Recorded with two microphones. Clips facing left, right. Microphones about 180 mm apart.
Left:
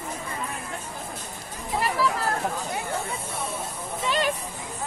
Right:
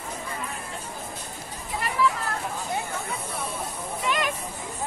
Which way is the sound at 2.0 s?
35° left (ahead or behind).